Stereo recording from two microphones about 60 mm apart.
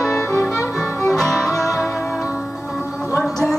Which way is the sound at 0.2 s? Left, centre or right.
Left.